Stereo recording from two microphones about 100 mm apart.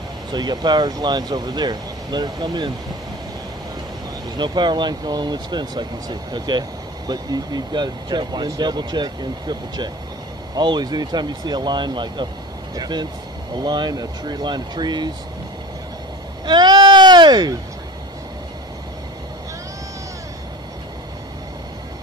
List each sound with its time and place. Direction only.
0.3 s speech: 45° right (ahead or behind)
4.4 s speech: 50° right (ahead or behind)
16.4 s speech: 45° right (ahead or behind)